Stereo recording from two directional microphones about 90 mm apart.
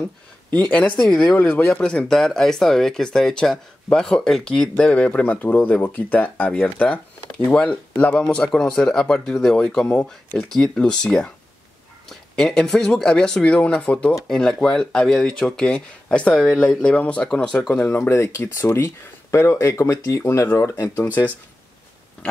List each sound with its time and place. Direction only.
0.7 s speech: 15° left (ahead or behind)
17.9 s speech: 25° left (ahead or behind)
21.0 s speech: 20° left (ahead or behind)